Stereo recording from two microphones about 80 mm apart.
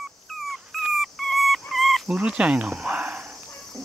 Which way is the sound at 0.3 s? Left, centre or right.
Centre.